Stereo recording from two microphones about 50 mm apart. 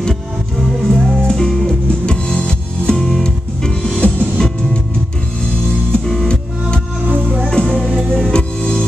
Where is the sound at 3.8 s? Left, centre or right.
Left.